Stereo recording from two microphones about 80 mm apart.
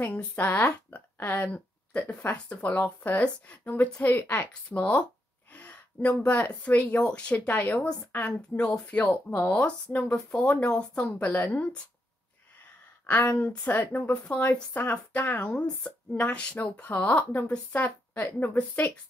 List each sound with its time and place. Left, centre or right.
0.0 s speech: centre
8.4 s speech: centre
13.0 s speech: left